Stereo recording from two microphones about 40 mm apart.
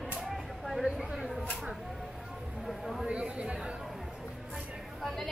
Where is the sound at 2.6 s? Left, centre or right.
Centre.